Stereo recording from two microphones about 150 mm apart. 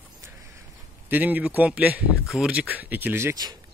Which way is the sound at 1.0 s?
10° right (ahead or behind).